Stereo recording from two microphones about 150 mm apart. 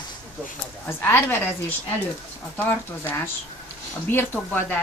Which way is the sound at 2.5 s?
15° left (ahead or behind).